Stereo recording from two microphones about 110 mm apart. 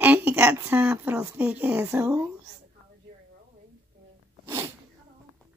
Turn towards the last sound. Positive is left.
turn(degrees=-25)  # may be behind; listen again after turning